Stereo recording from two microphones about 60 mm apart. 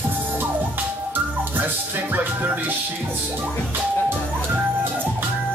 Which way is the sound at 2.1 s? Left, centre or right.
Right.